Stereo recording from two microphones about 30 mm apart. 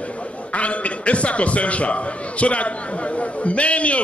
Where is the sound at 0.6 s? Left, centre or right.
Left.